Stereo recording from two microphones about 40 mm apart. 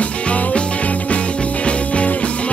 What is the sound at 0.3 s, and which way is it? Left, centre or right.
Music, left.